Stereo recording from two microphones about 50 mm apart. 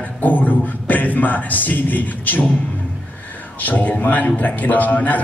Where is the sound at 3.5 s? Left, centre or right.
Left.